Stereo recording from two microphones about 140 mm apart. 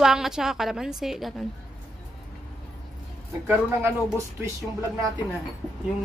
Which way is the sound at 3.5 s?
20° right (ahead or behind).